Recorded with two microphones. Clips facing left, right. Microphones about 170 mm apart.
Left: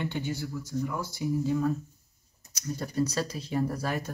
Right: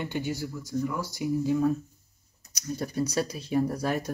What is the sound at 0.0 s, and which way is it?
Speech, 10° right (ahead or behind).